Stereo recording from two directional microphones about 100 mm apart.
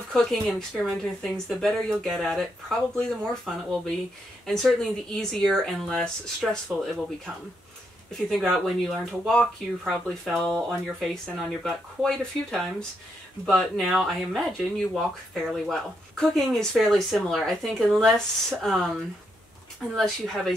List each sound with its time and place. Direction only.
0.1 s speech: 5° left (ahead or behind)
8.1 s speech: centre (ahead or behind)